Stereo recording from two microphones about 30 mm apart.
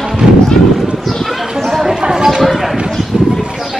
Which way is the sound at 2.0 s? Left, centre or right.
Right.